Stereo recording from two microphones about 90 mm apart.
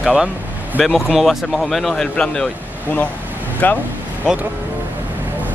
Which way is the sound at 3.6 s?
20° left (ahead or behind).